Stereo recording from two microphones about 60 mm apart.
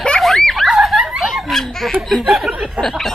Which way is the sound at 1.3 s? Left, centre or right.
Centre.